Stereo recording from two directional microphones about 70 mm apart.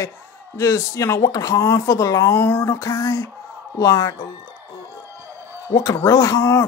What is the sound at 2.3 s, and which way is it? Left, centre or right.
Speech, left.